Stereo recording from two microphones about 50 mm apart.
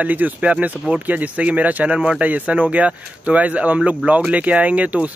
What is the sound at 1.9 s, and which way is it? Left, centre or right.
Speech, right.